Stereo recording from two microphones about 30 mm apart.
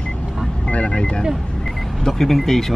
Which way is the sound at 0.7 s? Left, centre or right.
Left.